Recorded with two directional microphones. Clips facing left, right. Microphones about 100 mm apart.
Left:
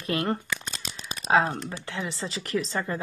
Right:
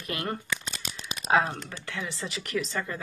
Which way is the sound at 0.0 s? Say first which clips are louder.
Left 5 dB; 30° left (ahead or behind).